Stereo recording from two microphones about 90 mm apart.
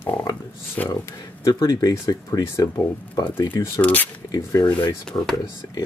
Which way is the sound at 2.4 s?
30° left (ahead or behind).